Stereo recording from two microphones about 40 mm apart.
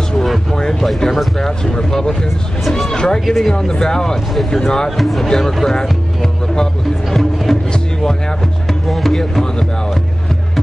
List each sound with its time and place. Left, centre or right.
0.6 s speech: centre
4.9 s speech: centre
7.1 s speech: centre
8.8 s speech: centre